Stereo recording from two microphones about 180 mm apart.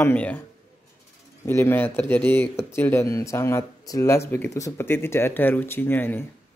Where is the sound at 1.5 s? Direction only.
15° left (ahead or behind).